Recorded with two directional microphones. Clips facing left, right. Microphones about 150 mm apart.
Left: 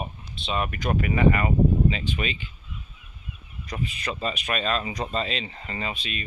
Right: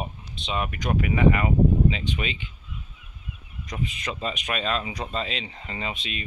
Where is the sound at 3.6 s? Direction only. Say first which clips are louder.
Even; 20° right (ahead or behind).